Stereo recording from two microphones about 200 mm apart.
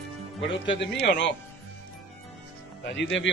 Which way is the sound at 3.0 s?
65° left (ahead or behind).